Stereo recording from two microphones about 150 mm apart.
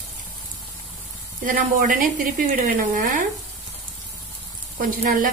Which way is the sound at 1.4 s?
65° right (ahead or behind).